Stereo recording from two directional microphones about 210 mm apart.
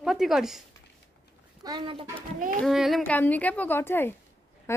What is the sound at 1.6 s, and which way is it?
Speech, 20° right (ahead or behind).